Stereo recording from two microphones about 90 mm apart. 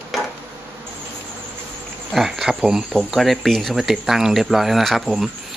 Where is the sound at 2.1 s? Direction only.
5° right (ahead or behind).